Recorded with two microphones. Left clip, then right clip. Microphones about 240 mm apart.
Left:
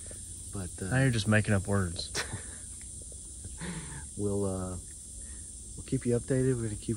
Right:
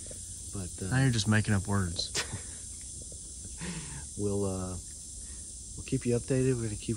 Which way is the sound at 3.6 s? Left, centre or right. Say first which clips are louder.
Even; centre.